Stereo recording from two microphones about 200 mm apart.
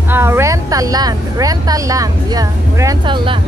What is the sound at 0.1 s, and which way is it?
A woman's voice, 10° right (ahead or behind).